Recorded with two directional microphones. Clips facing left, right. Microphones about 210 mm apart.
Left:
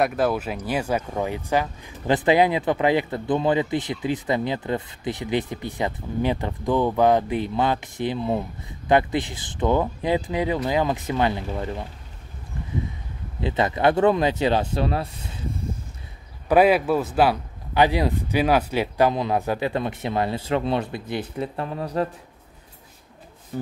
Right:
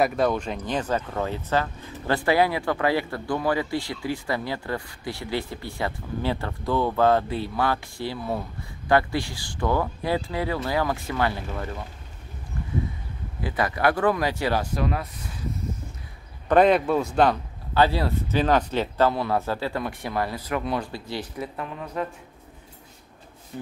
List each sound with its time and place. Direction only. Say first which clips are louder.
0.0 s speech: left 1 dB; centre (ahead or behind); by 11.8 s 20° left (ahead or behind)
13.4 s speech: left 3 dB; 25° left (ahead or behind)
16.4 s speech: left 1 dB; 5° left (ahead or behind); by 22.0 s 35° left (ahead or behind)